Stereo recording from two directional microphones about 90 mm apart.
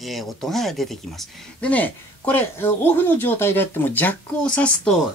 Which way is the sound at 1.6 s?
15° left (ahead or behind).